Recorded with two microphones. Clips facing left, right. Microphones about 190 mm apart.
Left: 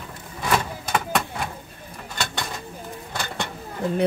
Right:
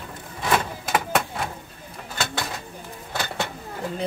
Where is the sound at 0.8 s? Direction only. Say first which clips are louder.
Right 1 dB; 5° right (ahead or behind).